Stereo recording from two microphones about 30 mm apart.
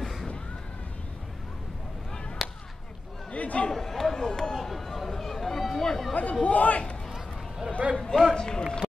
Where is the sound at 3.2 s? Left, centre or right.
Left.